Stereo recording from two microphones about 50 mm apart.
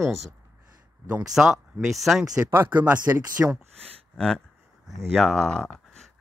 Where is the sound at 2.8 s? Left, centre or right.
Right.